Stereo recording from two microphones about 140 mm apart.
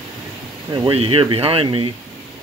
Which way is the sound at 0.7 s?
30° right (ahead or behind).